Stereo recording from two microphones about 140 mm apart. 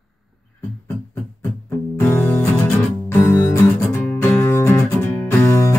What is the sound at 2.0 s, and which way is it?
Music, 15° left (ahead or behind).